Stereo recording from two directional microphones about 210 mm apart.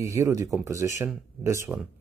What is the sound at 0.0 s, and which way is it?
Speech, 15° right (ahead or behind).